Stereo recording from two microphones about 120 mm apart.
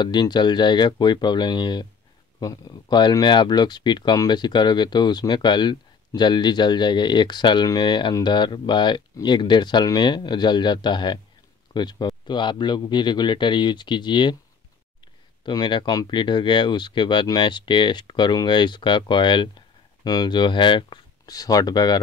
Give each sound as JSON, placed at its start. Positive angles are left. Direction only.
{"t": 0.0, "sound": "speech", "side_deg": 35}
{"t": 15.4, "sound": "speech", "side_deg": 40}